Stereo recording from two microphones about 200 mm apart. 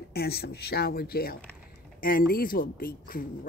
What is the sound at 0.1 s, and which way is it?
Speech, 50° left (ahead or behind).